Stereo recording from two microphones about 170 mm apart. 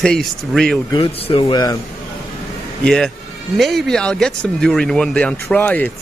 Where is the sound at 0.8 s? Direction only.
30° left (ahead or behind).